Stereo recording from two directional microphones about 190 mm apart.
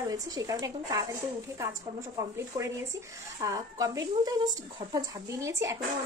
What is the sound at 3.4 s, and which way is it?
A woman's voice, 15° right (ahead or behind).